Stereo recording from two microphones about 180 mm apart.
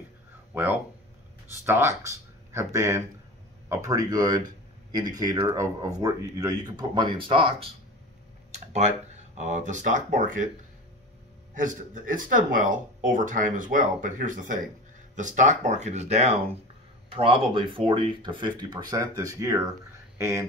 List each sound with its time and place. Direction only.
0.5 s speech: 10° right (ahead or behind); by 10.5 s 45° right (ahead or behind)
11.5 s speech: 45° right (ahead or behind); by 20.4 s 15° right (ahead or behind)